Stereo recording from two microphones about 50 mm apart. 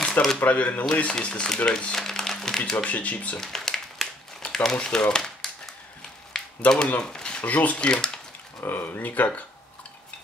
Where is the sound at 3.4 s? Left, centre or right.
Centre.